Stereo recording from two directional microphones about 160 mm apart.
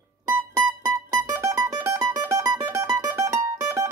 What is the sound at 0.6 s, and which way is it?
Music, 20° right (ahead or behind).